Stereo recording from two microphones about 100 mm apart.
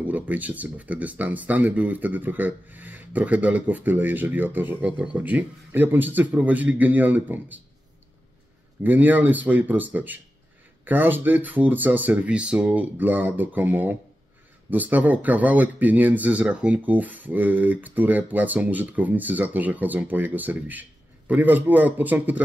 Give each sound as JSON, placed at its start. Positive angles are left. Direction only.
{"t": 0.1, "sound": "speech", "side_deg": -15}
{"t": 8.8, "sound": "speech", "side_deg": -20}